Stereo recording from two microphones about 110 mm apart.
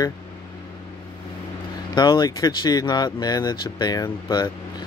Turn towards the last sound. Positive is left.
turn(degrees=40)  # may be behind; listen again after turning